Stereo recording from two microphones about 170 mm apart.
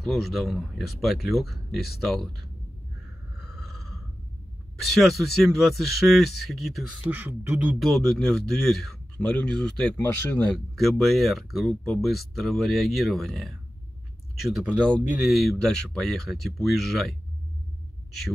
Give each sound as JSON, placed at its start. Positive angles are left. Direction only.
{"t": 0.0, "sound": "speech", "side_deg": 0}
{"t": 3.3, "sound": "a sound", "side_deg": 0}
{"t": 4.9, "sound": "speech", "side_deg": 0}
{"t": 7.1, "sound": "speech", "side_deg": -10}
{"t": 10.8, "sound": "speech", "side_deg": 0}